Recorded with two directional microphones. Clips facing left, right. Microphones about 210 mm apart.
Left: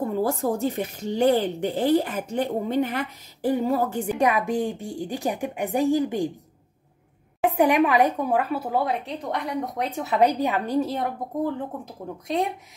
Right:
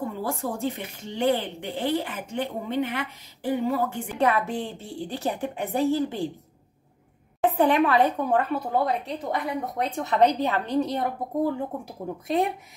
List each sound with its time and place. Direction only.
0.1 s speech: 40° left (ahead or behind)
4.2 s speech: 15° left (ahead or behind)
7.4 s speech: 10° left (ahead or behind)